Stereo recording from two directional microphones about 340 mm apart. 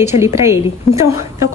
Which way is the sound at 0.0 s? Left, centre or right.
Centre.